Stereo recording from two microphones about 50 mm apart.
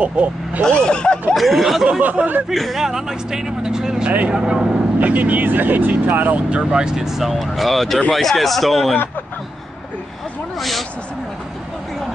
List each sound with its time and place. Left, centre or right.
0.0 s speech: right
0.7 s speech: centre
1.3 s speech: centre
1.9 s speech: right
2.5 s speech: centre
2.8 s speech: centre
5.0 s speech: right
6.5 s speech: centre
10.6 s speech: centre